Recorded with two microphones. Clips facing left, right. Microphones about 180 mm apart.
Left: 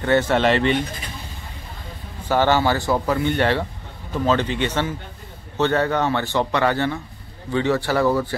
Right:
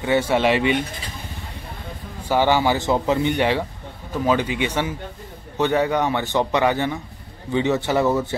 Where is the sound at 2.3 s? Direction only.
15° right (ahead or behind).